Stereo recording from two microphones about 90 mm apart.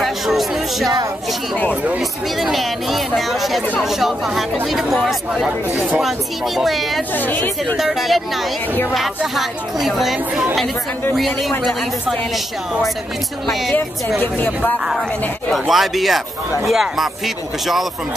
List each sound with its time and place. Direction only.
0.0 s music: centre (ahead or behind)
2.0 s speech: centre (ahead or behind)
14.2 s a woman's voice: 20° left (ahead or behind)
15.5 s speech: centre (ahead or behind)